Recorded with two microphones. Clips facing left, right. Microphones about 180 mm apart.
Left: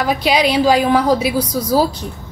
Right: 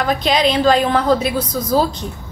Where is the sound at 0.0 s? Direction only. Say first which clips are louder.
Left 1 dB; 5° left (ahead or behind).